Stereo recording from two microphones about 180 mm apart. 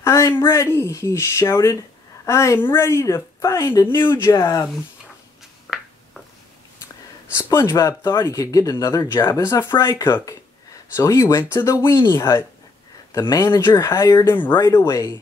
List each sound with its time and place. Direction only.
0.0 s speech: 15° left (ahead or behind)
5.7 s a sound: centre (ahead or behind)
7.3 s speech: 15° left (ahead or behind)